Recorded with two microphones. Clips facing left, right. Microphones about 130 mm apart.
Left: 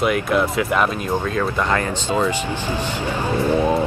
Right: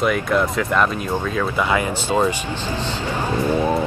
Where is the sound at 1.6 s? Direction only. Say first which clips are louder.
Right 1 dB; 10° right (ahead or behind).